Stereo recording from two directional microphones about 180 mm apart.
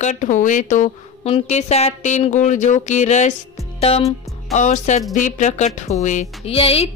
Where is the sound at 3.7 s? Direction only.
35° left (ahead or behind).